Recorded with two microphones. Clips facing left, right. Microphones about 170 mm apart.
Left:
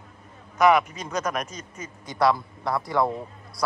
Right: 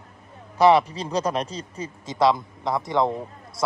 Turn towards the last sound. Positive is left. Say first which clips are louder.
# right 2 dB
turn(degrees=-20)  # may be behind; listen again after turning